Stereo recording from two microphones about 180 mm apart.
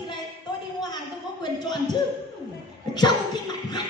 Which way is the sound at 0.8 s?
25° left (ahead or behind).